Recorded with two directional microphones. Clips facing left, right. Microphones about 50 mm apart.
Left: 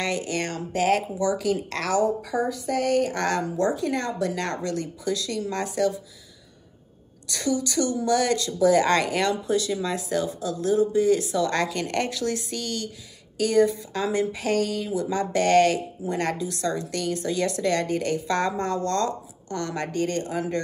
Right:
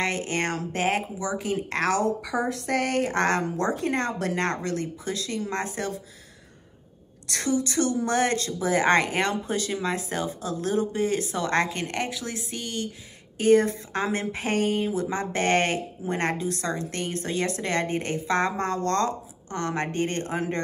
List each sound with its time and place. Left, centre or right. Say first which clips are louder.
0.0 s a woman's voice: even; right
0.8 s speech: left 5 dB; right
1.9 s a woman's voice: left 3 dB; right
7.4 s a woman's voice: even; right
13.4 s a woman's voice: right 1 dB; right